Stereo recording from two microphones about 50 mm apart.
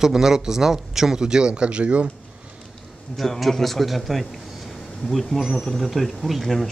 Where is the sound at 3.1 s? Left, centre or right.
Centre.